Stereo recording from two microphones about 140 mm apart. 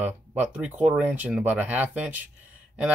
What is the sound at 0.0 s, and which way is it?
Speech, 15° right (ahead or behind).